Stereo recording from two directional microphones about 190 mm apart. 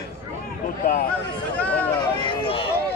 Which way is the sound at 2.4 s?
30° left (ahead or behind).